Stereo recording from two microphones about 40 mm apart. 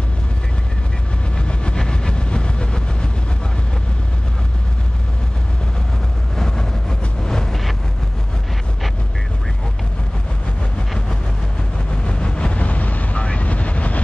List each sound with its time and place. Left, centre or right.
1.4 s train: left
1.8 s vehicle: centre
6.3 s vehicle: centre
11.9 s vehicle: left
12.5 s vehicle: left